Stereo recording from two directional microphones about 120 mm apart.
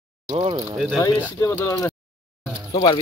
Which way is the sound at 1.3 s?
25° left (ahead or behind).